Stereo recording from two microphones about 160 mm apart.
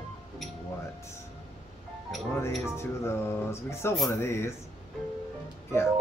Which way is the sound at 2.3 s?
15° left (ahead or behind).